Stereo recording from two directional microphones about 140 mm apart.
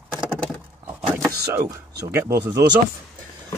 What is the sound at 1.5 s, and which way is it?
Speech, 25° right (ahead or behind).